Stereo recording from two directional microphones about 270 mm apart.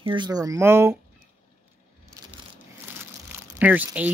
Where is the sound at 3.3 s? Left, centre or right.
Centre.